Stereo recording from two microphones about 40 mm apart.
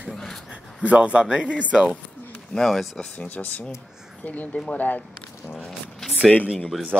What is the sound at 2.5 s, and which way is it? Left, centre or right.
Speech, left.